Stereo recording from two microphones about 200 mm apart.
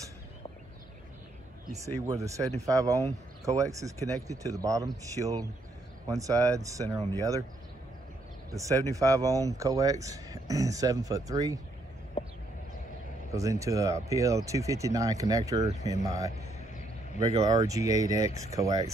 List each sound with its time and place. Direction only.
2.0 s speech: 15° right (ahead or behind)
8.5 s speech: 15° right (ahead or behind)
13.3 s speech: 15° right (ahead or behind)
17.3 s speech: 20° right (ahead or behind)